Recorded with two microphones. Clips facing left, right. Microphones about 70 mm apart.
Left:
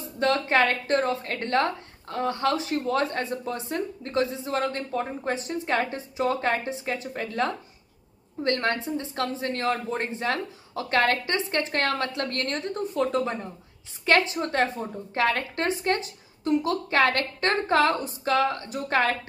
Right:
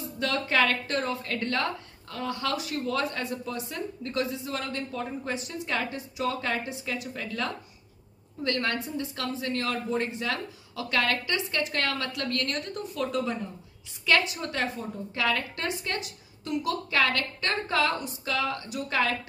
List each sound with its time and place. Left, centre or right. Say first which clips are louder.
0.2 s a woman's voice: left 4 dB; left